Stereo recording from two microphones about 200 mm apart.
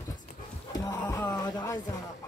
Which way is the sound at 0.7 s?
15° left (ahead or behind).